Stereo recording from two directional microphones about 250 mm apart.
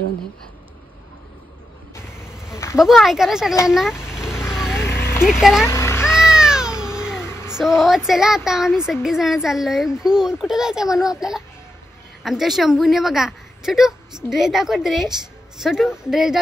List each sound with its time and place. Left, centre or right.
2.5 s insect: centre
2.8 s speech: centre
4.0 s vehicle: centre
4.7 s a sound: centre
5.2 s speech: centre
5.7 s a sound: centre
6.0 s cat: centre
7.5 s speech: centre